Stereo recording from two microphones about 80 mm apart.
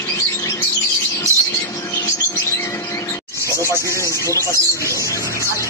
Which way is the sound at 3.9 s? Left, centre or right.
Left.